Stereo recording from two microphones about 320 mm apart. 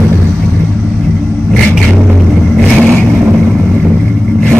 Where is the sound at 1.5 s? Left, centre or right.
Centre.